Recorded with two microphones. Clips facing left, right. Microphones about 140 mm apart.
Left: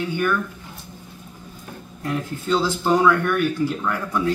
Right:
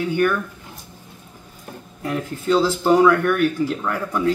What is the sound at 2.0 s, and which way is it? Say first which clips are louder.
Speech: right 2 dB; 5° right (ahead or behind).